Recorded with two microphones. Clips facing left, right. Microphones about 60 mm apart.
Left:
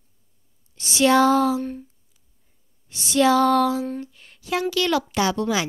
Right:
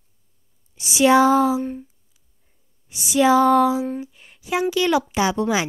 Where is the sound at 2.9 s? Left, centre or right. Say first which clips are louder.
Right 2 dB; centre.